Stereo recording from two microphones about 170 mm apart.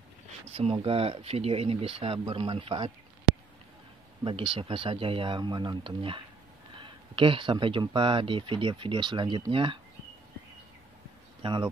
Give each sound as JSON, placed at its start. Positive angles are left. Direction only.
{"t": 0.5, "sound": "speech", "side_deg": -35}
{"t": 11.4, "sound": "speech", "side_deg": -25}